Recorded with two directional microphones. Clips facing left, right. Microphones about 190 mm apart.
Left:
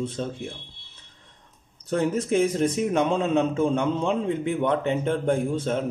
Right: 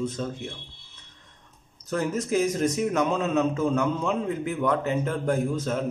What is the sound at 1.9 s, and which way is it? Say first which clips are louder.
A man's voice: left 3 dB; 30° left (ahead or behind).